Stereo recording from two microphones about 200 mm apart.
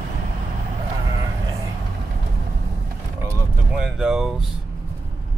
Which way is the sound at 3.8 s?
5° right (ahead or behind).